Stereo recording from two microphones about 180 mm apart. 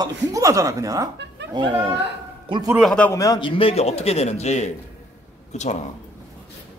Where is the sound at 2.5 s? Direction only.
15° right (ahead or behind).